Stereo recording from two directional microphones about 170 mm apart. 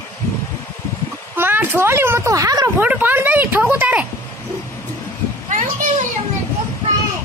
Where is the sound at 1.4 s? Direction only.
10° right (ahead or behind).